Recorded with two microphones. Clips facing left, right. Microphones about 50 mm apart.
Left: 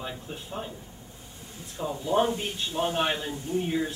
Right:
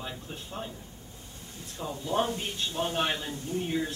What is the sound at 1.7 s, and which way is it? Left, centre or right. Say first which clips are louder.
A man's voice: left 4 dB; centre.